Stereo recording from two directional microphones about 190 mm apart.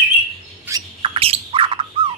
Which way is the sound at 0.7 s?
10° right (ahead or behind).